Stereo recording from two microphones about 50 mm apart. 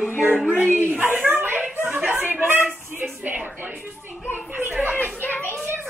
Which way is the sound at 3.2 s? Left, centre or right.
Right.